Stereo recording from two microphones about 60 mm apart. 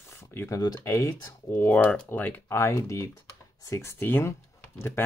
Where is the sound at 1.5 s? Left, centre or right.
Left.